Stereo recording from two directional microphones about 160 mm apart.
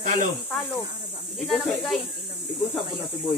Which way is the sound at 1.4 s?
Centre (ahead or behind).